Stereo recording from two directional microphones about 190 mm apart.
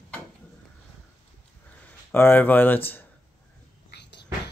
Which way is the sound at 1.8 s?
10° left (ahead or behind).